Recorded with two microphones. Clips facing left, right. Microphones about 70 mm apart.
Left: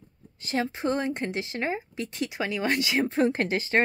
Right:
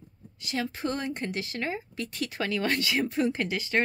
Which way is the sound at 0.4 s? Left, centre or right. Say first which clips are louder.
Left 3 dB; left.